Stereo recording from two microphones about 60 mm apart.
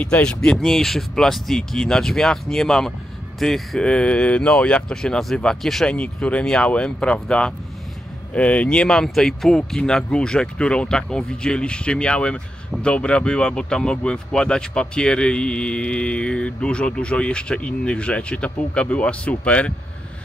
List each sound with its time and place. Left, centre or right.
0.0 s speech: centre
3.8 s speech: centre
5.9 s speech: left